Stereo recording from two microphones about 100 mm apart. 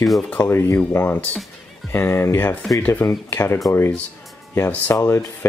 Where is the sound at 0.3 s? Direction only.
20° left (ahead or behind).